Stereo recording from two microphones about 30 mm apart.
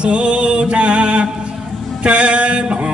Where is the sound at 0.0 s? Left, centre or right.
Right.